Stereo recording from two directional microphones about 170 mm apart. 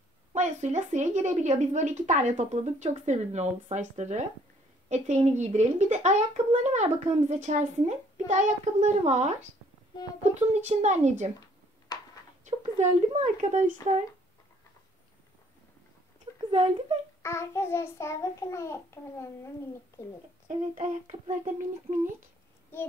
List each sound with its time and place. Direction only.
0.3 s a woman's voice: 45° right (ahead or behind)
10.5 s speech: 40° right (ahead or behind)
12.4 s speech: 45° right (ahead or behind)
17.2 s child singing: 15° left (ahead or behind)
20.4 s speech: 45° right (ahead or behind)